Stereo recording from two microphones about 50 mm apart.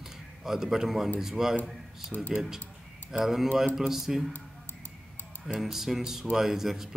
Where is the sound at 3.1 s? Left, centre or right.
Centre.